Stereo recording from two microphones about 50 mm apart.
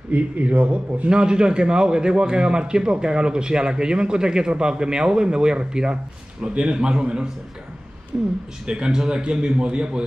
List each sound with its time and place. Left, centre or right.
0.1 s a man's voice: right
8.1 s speech: right
8.6 s a man's voice: centre